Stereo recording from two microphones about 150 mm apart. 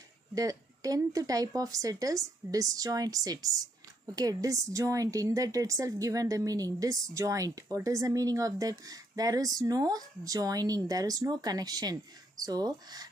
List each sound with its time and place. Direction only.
0.3 s a woman's voice: 25° right (ahead or behind)